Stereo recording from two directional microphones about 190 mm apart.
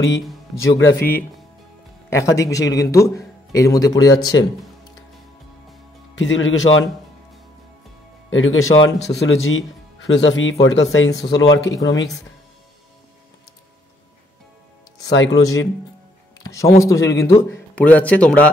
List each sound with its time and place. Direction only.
0.6 s speech: 80° left
0.9 s a man's voice: 10° left (ahead or behind)
6.1 s speech: 75° left (ahead or behind)
8.3 s speech: 90° left
11.3 s speech: 65° left (ahead or behind)
11.6 s a man's voice: 15° left (ahead or behind)
15.0 s speech: 70° left (ahead or behind)
16.4 s a man's voice: 15° left (ahead or behind)